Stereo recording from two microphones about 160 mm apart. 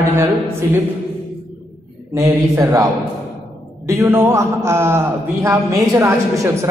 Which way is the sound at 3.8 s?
15° right (ahead or behind).